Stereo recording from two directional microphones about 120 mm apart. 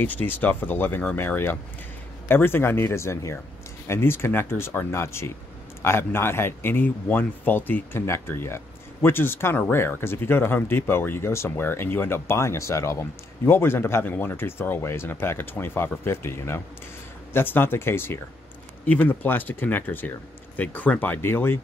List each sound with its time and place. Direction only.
0.0 s speech: 15° left (ahead or behind)